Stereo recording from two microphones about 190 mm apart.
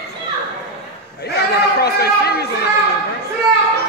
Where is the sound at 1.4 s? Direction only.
55° left (ahead or behind).